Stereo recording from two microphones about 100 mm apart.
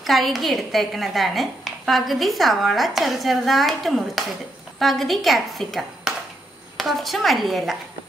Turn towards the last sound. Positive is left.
turn(degrees=0)  # may be behind; listen again after turning